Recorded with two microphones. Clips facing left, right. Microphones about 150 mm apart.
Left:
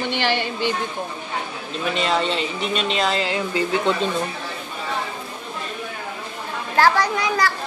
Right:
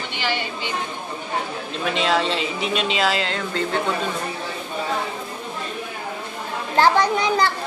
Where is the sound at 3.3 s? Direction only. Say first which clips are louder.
Left 2 dB; 10° left (ahead or behind).